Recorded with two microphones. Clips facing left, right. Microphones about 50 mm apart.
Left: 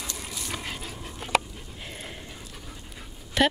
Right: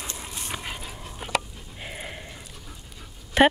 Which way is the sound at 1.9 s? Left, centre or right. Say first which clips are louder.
Right 4 dB; centre.